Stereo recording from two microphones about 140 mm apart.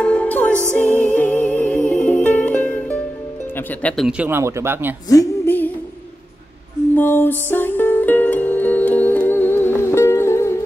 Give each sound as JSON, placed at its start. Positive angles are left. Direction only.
{"t": 0.0, "sound": "music", "side_deg": 10}
{"t": 3.8, "sound": "speech", "side_deg": 5}
{"t": 4.2, "sound": "speech", "side_deg": -15}
{"t": 5.1, "sound": "a sound", "side_deg": 15}
{"t": 7.0, "sound": "music", "side_deg": 15}